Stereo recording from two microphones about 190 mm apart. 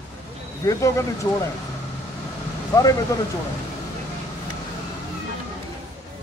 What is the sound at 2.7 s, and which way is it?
Speech, 20° left (ahead or behind).